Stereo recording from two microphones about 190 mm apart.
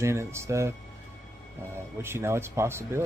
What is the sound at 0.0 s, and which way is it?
Speech, 15° right (ahead or behind).